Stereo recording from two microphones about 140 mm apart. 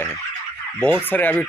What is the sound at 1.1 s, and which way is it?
Speech, 15° left (ahead or behind).